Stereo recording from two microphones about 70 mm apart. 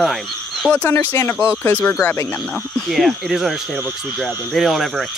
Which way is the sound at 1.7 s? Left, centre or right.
Left.